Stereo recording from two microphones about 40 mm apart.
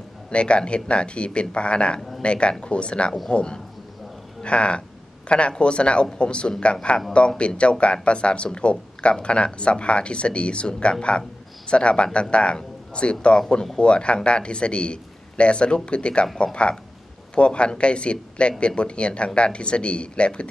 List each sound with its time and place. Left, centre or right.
0.3 s speech: left
2.0 s a sound: centre
2.2 s speech: left
17.4 s speech: left